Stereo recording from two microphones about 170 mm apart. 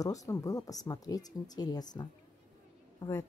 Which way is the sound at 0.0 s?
20° left (ahead or behind).